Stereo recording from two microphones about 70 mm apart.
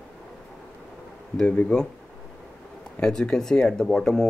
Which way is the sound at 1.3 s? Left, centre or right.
Centre.